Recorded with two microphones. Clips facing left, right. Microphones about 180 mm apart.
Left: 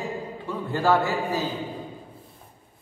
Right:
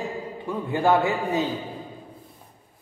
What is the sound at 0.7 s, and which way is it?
Speech, 15° right (ahead or behind).